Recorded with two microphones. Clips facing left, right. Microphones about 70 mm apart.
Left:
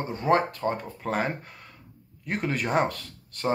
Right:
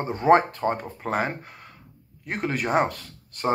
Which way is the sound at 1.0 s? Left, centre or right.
Centre.